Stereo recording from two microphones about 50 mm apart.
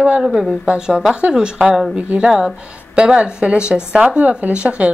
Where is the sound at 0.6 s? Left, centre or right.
Right.